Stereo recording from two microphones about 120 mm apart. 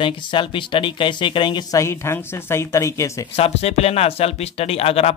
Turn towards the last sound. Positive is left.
turn(degrees=55)  # may be behind; listen again after turning